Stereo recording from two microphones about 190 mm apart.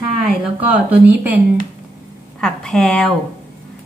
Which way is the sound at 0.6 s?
10° right (ahead or behind).